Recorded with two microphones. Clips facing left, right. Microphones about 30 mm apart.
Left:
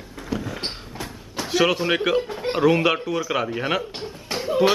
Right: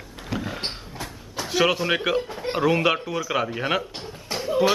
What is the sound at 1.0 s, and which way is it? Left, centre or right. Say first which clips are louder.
Door: left 2 dB; centre.